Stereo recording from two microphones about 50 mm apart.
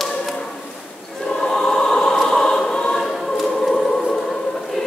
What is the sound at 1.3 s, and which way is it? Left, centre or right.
Choir, centre.